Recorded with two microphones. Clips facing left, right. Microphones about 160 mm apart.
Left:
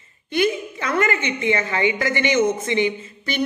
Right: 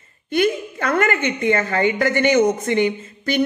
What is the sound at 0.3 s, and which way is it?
A woman's voice, 50° right (ahead or behind).